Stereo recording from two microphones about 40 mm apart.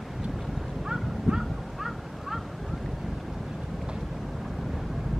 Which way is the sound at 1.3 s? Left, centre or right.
Right.